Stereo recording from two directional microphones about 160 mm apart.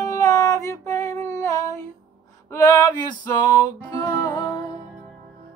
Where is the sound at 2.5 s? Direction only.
20° left (ahead or behind).